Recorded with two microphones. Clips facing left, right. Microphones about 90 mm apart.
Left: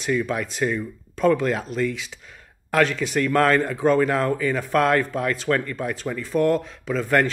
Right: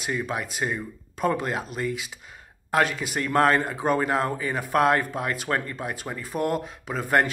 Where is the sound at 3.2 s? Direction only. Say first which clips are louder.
Left 2 dB; 20° right (ahead or behind).